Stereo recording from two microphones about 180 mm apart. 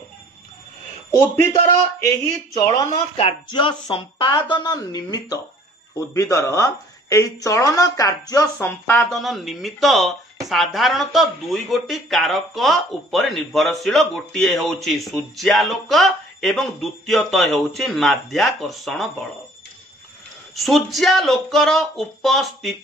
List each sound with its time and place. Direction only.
2.6 s speech: 25° left (ahead or behind)
9.1 s speech: centre (ahead or behind)
20.5 s speech: centre (ahead or behind)